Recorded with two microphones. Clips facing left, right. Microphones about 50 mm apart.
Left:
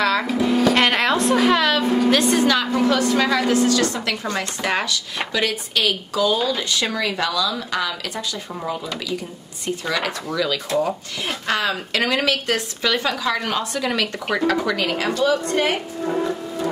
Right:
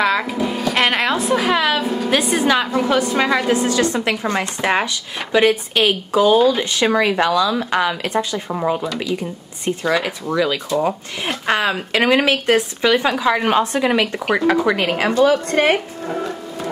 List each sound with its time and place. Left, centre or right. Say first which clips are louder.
0.0 s a woman's voice: right 1 dB; centre
9.9 s a woman's voice: right 4 dB; centre; by 15.2 s right
15.2 s speech: right 3 dB; right